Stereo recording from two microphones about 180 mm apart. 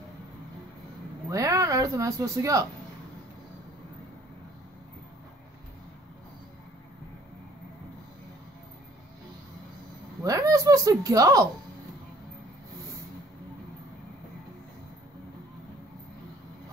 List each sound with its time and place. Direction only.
1.3 s speech: 20° right (ahead or behind)
10.2 s a woman's voice: 20° right (ahead or behind)